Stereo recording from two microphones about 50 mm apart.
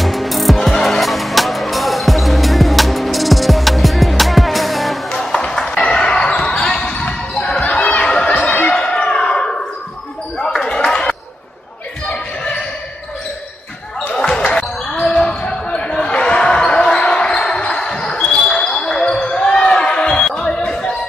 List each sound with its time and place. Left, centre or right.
0.0 s music: centre
5.1 s basketball bounce: centre
7.6 s chatter: left
8.7 s a sound: left
10.4 s basketball bounce: centre
14.1 s basketball bounce: centre
19.3 s music: centre